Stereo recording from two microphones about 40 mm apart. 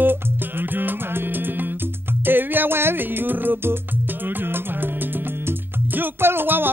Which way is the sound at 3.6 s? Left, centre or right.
Right.